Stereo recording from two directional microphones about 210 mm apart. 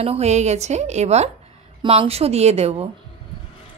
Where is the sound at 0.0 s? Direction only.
30° right (ahead or behind).